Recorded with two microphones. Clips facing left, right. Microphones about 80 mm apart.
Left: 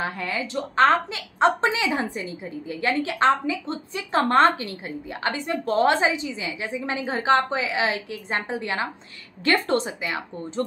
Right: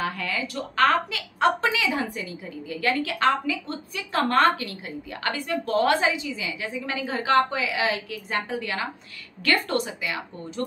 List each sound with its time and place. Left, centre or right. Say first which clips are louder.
0.0 s a woman's voice: left 1 dB; left